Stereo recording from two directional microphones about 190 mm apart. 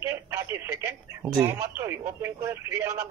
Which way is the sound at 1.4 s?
15° right (ahead or behind).